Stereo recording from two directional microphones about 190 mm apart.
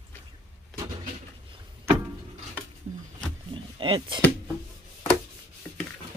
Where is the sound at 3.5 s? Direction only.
25° right (ahead or behind).